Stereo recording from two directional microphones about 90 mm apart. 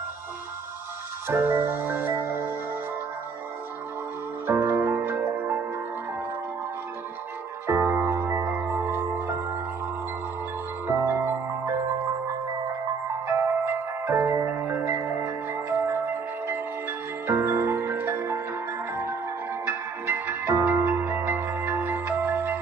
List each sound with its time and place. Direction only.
1.2 s music: 25° right (ahead or behind)
4.6 s music: 30° right (ahead or behind)
7.6 s music: 30° right (ahead or behind)
10.9 s music: 30° right (ahead or behind)
13.4 s music: 25° right (ahead or behind)
17.3 s marimba: 30° right (ahead or behind)
20.1 s music: 25° right (ahead or behind)